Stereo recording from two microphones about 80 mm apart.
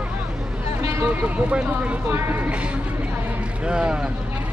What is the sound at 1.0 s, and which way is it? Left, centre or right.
Speech, centre.